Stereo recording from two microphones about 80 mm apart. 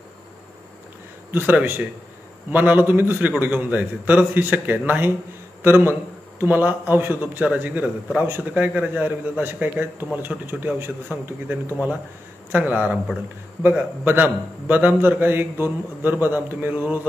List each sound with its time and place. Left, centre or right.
1.3 s a man's voice: right